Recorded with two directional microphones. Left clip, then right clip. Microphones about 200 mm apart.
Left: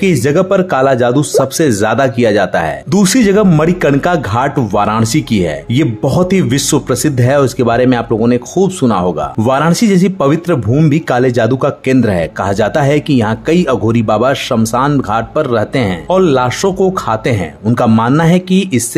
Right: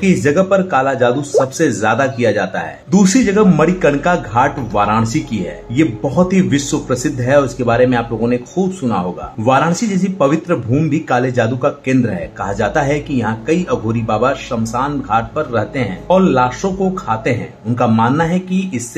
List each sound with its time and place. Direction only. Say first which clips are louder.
0.0 s speech: left 2 dB; 40° left (ahead or behind)
9.5 s speech: left 1 dB; 40° left (ahead or behind)